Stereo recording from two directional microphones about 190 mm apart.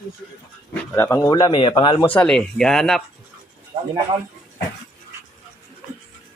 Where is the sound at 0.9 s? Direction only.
15° left (ahead or behind).